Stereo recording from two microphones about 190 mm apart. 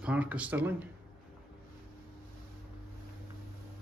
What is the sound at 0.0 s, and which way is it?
Speech, 5° right (ahead or behind).